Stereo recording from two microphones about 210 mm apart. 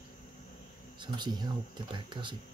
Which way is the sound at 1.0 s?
20° right (ahead or behind).